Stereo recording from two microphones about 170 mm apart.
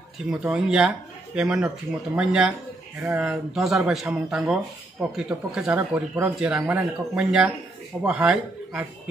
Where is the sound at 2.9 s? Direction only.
15° right (ahead or behind).